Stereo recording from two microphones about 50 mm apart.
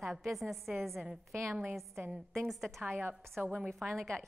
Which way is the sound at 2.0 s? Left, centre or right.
Right.